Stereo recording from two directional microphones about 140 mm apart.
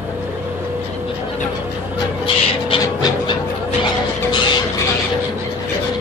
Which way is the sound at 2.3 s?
35° left (ahead or behind).